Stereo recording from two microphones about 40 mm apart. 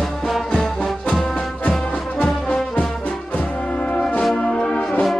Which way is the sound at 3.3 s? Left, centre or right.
Left.